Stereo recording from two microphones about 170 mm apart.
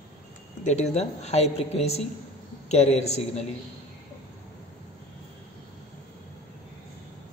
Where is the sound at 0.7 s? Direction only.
40° left (ahead or behind).